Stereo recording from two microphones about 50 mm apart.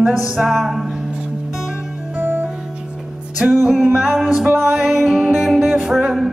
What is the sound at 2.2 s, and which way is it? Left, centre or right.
Music, right.